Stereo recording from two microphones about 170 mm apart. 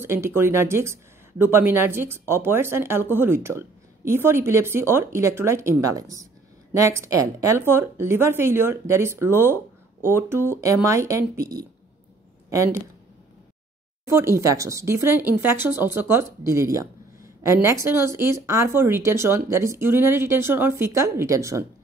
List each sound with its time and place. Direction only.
0.0 s speech: 15° right (ahead or behind)
14.0 s speech: 15° right (ahead or behind)